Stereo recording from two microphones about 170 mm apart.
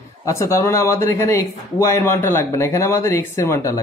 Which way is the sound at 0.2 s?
15° left (ahead or behind).